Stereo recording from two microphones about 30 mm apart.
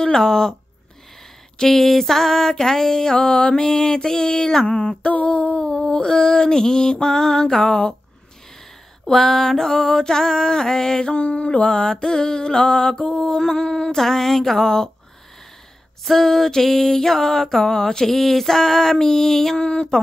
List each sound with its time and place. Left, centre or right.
0.0 s mantra: centre
1.7 s mantra: centre; by 4.9 s left
5.1 s music: left
5.6 s a sound: left
6.1 s mantra: left
9.0 s mantra: centre
11.1 s mantra: left
13.9 s mantra: centre
16.2 s mantra: centre
18.0 s mantra: centre
19.6 s mantra: left